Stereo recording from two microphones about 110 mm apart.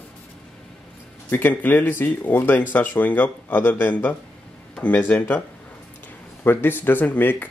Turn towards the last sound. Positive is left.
turn(degrees=15)  # may be behind; listen again after turning